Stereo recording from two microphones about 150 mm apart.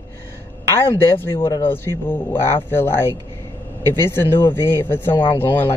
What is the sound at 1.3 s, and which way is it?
Speech, 35° left (ahead or behind).